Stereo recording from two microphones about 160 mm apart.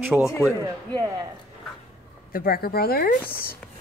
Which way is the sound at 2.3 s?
70° left (ahead or behind).